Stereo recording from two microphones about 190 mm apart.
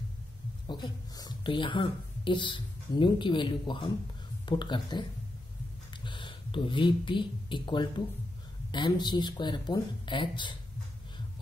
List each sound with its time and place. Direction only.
0.7 s speech: 20° left (ahead or behind)